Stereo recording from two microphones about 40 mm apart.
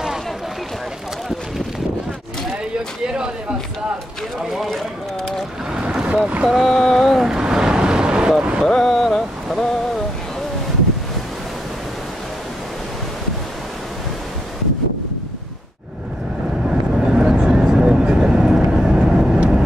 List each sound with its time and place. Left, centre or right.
4.6 s run: centre
5.7 s boat: centre
6.6 s a sound: centre
7.2 s vehicle: centre
8.6 s a sound: centre
16.6 s vehicle: centre